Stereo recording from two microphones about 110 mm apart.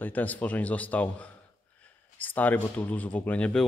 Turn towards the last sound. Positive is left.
turn(degrees=10)  # may be behind; listen again after turning